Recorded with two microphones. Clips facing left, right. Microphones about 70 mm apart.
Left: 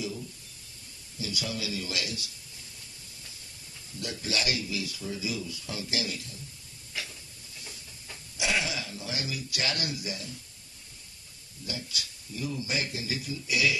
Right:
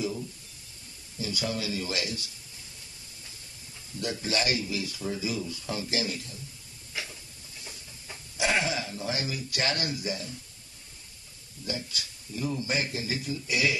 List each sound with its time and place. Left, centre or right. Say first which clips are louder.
1.2 s speech: right 3 dB; right
4.0 s speech: right 3 dB; right
8.4 s speech: right 3 dB; right
11.6 s speech: right 3 dB; right